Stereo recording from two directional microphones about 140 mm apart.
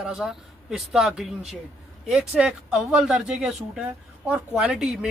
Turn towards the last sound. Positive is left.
turn(degrees=-5)  # may be behind; listen again after turning